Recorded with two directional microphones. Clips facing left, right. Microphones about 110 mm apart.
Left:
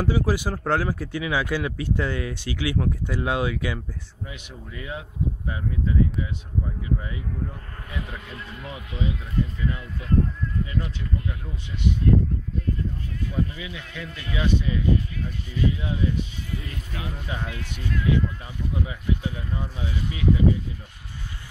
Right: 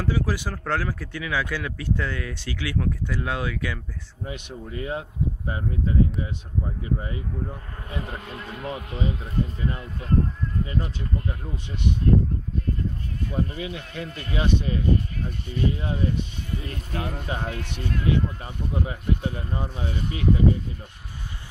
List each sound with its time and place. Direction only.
0.0 s speech: 10° left (ahead or behind)
4.2 s speech: 45° right (ahead or behind)
7.9 s speech: 35° right (ahead or behind)
13.2 s speech: 40° right (ahead or behind)
17.6 s speech: 60° right (ahead or behind)
17.9 s speech: 45° right (ahead or behind)